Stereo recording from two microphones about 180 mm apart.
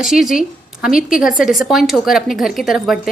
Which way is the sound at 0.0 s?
Centre (ahead or behind).